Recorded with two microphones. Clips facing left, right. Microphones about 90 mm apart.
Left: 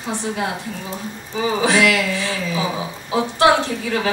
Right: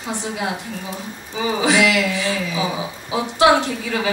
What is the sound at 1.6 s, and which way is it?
A woman's voice, 15° right (ahead or behind).